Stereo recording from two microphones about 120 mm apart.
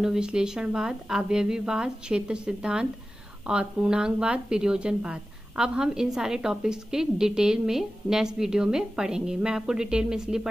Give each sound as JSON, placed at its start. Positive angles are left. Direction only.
{"t": 0.0, "sound": "a woman's voice", "side_deg": -5}